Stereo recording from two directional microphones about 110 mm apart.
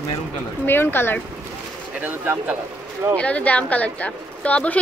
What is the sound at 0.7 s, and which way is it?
Speech, 20° left (ahead or behind).